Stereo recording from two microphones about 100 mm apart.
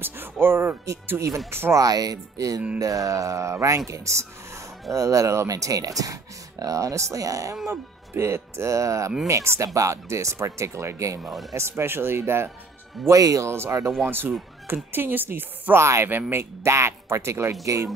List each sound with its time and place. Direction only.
0.0 s speech: 20° right (ahead or behind)
1.8 s speech: 40° right (ahead or behind); by 12.4 s 25° right (ahead or behind)
13.0 s speech: 35° right (ahead or behind)